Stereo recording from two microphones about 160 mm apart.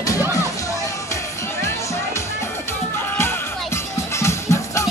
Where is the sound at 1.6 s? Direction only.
20° left (ahead or behind).